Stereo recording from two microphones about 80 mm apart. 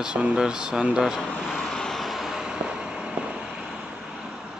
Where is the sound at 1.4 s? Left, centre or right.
Centre.